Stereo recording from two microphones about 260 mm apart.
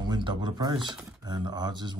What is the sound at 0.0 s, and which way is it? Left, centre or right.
Speech, centre.